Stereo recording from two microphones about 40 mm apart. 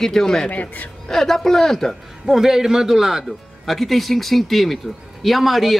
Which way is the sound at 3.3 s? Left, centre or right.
Centre.